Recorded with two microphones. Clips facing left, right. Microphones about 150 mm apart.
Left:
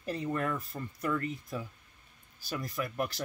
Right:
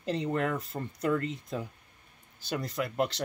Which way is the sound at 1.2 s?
90° right.